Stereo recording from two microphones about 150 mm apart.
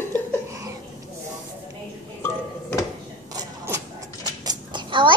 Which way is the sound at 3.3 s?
25° right (ahead or behind).